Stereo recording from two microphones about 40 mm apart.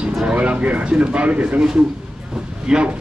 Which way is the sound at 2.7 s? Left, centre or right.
Right.